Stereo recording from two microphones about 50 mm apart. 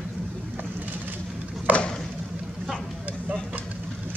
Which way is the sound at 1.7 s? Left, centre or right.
Right.